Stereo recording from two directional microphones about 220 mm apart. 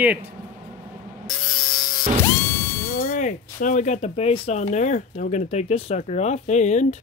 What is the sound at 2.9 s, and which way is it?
Speech, 40° left (ahead or behind).